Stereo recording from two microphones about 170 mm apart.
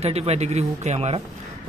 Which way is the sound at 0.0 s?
40° right (ahead or behind).